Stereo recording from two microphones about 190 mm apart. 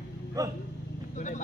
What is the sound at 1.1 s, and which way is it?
Vehicle, 40° left (ahead or behind).